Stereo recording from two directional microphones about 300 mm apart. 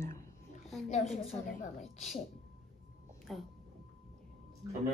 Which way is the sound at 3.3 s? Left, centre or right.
Centre.